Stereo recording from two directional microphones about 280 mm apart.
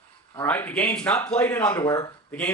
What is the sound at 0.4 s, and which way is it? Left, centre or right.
Speech, centre.